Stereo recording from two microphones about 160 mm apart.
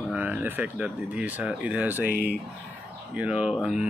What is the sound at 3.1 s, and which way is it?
Speech, 5° right (ahead or behind).